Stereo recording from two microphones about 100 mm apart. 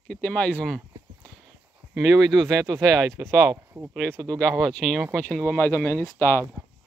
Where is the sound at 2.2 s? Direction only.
Centre (ahead or behind).